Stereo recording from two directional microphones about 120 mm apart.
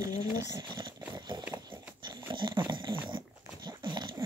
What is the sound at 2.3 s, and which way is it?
Dog, 40° right (ahead or behind).